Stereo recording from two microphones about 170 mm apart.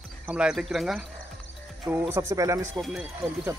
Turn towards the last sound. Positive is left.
turn(degrees=0)  # may be behind; listen again after turning